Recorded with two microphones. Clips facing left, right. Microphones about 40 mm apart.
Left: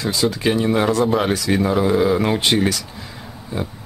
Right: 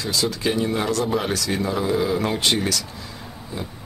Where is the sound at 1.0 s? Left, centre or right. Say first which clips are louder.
Left 5 dB; centre.